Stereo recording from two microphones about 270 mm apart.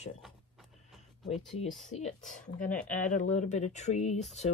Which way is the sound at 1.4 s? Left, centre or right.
Centre.